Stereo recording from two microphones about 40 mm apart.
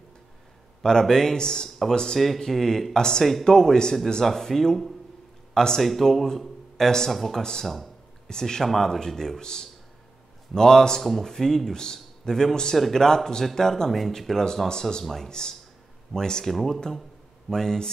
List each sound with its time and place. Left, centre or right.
0.8 s a man's voice: centre
2.1 s a man's voice: centre
5.8 s speech: centre
8.3 s a man's voice: centre
8.6 s a man's voice: centre
11.0 s a man's voice: centre